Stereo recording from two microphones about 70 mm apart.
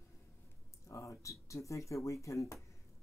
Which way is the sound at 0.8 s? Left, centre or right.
Left.